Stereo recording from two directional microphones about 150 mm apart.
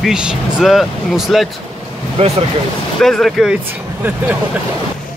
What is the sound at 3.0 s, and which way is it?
Speech, centre (ahead or behind).